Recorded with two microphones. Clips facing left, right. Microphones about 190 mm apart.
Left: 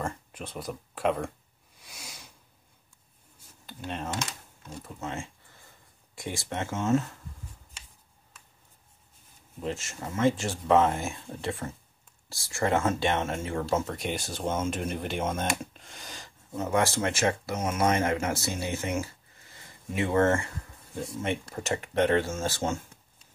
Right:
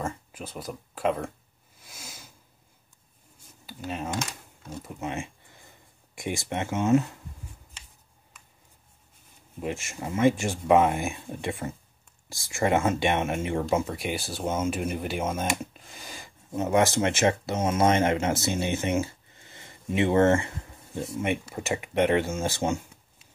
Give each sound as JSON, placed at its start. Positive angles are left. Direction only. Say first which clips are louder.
{"t": 0.0, "sound": "speech", "louder": "right 1 dB", "side_deg": -5}
{"t": 1.8, "sound": "sniff", "louder": "right 1 dB", "side_deg": 0}
{"t": 3.6, "sound": "speech", "louder": "right 2 dB", "side_deg": -5}
{"t": 9.6, "sound": "speech", "louder": "right 2 dB", "side_deg": -15}
{"t": 13.8, "sound": "speech", "louder": "right 1 dB", "side_deg": -5}
{"t": 16.5, "sound": "speech", "louder": "right 4 dB", "side_deg": -20}